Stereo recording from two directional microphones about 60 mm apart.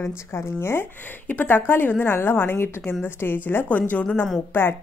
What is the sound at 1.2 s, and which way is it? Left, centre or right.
A woman's voice, left.